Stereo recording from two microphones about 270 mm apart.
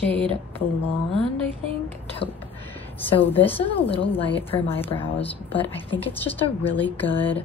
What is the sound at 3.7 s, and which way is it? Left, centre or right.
Speech, left.